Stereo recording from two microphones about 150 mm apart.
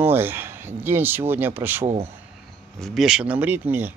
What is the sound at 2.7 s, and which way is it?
Speech, centre (ahead or behind).